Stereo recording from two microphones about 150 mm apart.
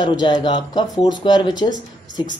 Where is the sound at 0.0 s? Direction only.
30° left (ahead or behind).